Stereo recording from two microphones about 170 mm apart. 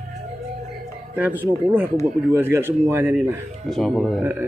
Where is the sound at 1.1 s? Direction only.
10° right (ahead or behind).